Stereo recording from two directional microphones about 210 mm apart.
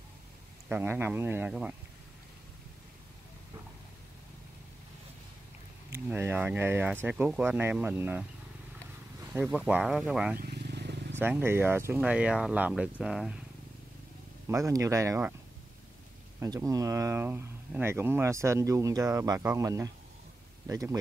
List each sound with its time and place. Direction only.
0.7 s speech: 10° right (ahead or behind)
5.9 s speech: 10° right (ahead or behind)
9.3 s speech: 5° right (ahead or behind)
10.4 s vehicle: 50° right (ahead or behind)
11.1 s speech: 10° right (ahead or behind)
14.5 s speech: 15° right (ahead or behind)
16.3 s speech: 15° right (ahead or behind)